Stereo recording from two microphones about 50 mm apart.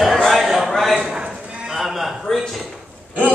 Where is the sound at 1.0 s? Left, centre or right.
Centre.